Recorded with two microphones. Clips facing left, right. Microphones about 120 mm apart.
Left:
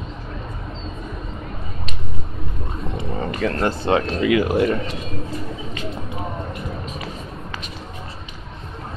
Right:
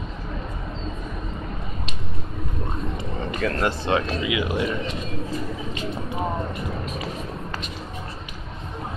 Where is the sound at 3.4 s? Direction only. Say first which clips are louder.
Left 3 dB; 30° left (ahead or behind).